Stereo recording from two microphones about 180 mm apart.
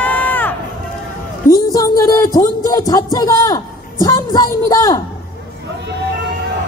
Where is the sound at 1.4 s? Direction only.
20° left (ahead or behind).